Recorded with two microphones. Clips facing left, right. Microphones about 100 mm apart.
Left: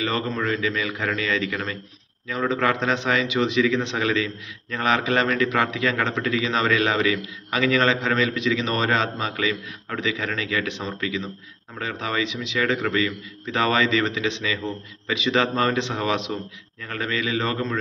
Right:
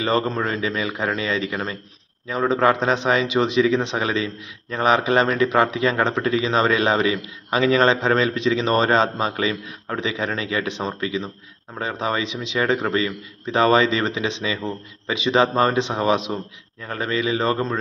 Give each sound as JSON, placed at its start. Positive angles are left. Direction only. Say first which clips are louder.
{"t": 0.0, "sound": "speech", "louder": "right 4 dB", "side_deg": -30}